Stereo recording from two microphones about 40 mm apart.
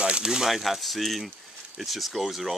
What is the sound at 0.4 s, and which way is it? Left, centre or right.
Speech, centre.